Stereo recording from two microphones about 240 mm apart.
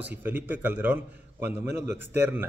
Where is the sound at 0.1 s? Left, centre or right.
Centre.